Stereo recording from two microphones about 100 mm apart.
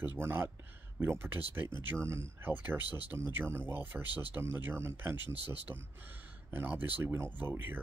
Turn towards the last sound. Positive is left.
turn(degrees=-20)  # may be behind; listen again after turning